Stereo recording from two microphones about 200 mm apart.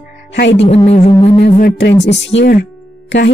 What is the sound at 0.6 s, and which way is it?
Speech, 30° left (ahead or behind).